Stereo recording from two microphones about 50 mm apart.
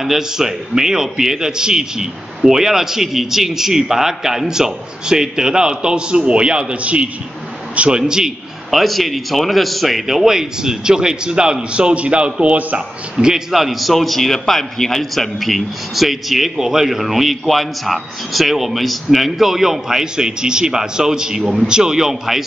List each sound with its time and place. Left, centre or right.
0.0 s a man's voice: centre; by 8.0 s right
8.1 s a sound: centre
8.7 s a man's voice: centre; by 12.8 s right
13.1 s a man's voice: centre
21.4 s a man's voice: centre
21.6 s a man's voice: centre